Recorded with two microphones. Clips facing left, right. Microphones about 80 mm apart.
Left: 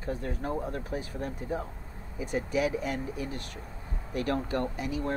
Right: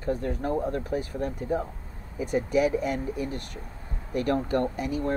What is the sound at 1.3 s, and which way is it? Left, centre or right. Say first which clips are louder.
Speech: right 5 dB; right.